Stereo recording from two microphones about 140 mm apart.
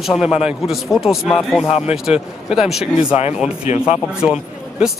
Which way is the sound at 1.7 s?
45° left (ahead or behind).